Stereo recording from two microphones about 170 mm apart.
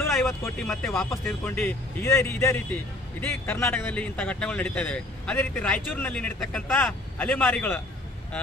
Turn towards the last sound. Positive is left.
turn(degrees=10)  # may be behind; listen again after turning